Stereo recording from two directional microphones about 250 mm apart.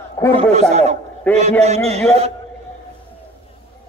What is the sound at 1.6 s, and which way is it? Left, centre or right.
Speech, right.